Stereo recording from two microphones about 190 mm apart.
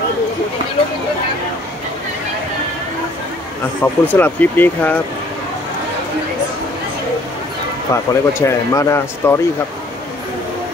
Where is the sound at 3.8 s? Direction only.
10° left (ahead or behind).